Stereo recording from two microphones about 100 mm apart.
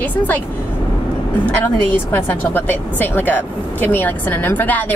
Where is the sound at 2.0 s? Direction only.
20° left (ahead or behind).